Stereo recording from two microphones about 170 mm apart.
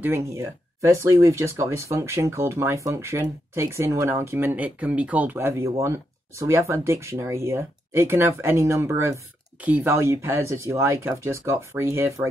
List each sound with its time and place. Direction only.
0.0 s speech: 15° right (ahead or behind)